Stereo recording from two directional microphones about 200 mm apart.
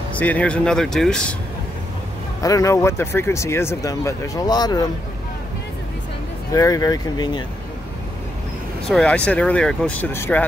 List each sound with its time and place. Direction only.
0.2 s speech: 5° left (ahead or behind)
2.4 s speech: 15° left (ahead or behind)
6.5 s speech: 15° left (ahead or behind)
8.8 s speech: 5° left (ahead or behind)